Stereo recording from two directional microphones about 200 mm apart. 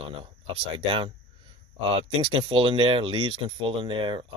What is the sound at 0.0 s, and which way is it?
Speech, 25° right (ahead or behind).